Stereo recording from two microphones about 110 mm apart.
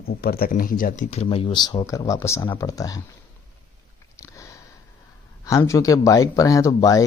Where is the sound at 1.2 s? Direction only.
55° left (ahead or behind); by 3.0 s 35° left (ahead or behind).